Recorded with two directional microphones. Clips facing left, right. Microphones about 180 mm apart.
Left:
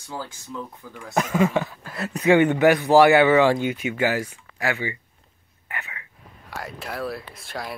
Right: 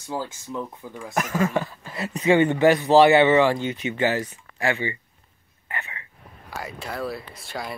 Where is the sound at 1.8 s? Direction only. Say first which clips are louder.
Even; centre (ahead or behind).